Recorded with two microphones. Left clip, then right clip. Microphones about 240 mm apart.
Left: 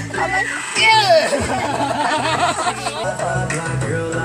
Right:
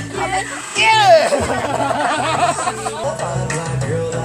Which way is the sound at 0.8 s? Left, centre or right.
Centre.